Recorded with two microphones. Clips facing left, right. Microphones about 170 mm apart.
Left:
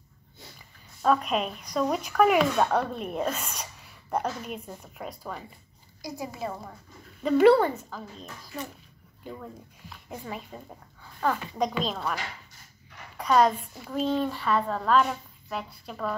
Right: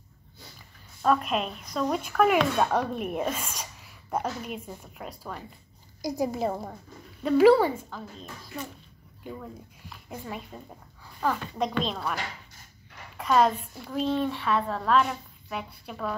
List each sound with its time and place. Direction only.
1.0 s speech: centre (ahead or behind)
6.0 s a woman's voice: 45° right (ahead or behind)
7.2 s speech: 5° right (ahead or behind)
13.2 s speech: centre (ahead or behind)